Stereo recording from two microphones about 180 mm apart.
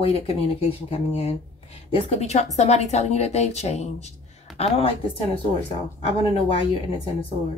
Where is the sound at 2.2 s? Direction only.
40° left (ahead or behind).